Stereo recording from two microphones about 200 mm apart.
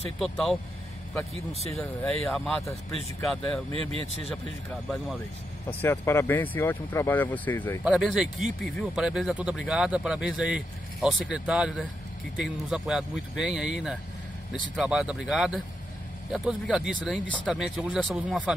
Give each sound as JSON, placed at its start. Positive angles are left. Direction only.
{"t": 0.2, "sound": "speech", "side_deg": 0}
{"t": 2.2, "sound": "speech", "side_deg": 0}
{"t": 3.7, "sound": "speech", "side_deg": -30}
{"t": 5.8, "sound": "speech", "side_deg": 10}
{"t": 7.8, "sound": "speech", "side_deg": -5}